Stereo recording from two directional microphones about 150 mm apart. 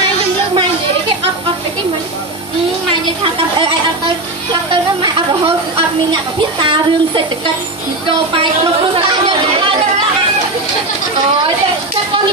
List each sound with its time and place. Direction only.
3.5 s speech: 35° right (ahead or behind)
6.6 s speech: 35° right (ahead or behind)